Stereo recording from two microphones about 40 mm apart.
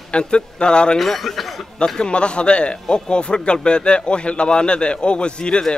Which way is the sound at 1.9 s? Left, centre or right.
Left.